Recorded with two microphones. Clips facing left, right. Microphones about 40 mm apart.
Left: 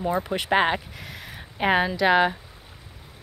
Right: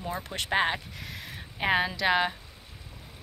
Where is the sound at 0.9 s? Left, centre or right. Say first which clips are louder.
Left 2 dB; centre.